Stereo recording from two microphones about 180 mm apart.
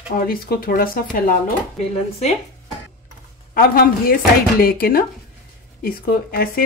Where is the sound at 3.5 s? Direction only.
55° left (ahead or behind).